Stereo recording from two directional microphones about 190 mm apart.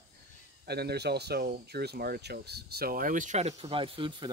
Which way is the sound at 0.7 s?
60° right (ahead or behind).